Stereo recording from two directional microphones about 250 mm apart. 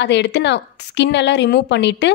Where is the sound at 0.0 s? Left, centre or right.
Left.